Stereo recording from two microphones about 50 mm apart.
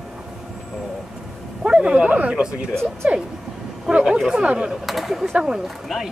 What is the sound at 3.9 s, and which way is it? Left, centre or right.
Speech, centre.